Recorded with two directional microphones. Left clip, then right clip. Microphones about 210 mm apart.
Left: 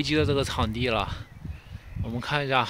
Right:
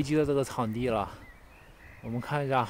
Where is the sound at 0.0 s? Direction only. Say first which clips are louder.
Left 2 dB; 5° right (ahead or behind).